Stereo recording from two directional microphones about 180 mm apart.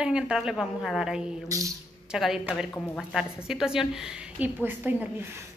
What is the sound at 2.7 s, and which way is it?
Speech, 10° left (ahead or behind).